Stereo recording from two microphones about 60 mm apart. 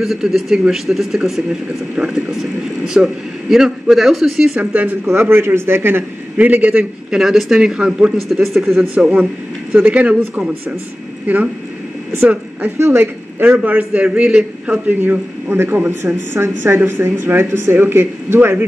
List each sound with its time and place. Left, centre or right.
0.0 s a man's voice: centre
4.6 s speech: right
5.1 s speech: right
6.3 s speech: right
7.1 s a man's voice: centre
8.3 s a man's voice: centre
9.0 s a man's voice: centre
9.7 s speech: right
12.6 s speech: right
13.4 s a man's voice: right
14.9 s speech: right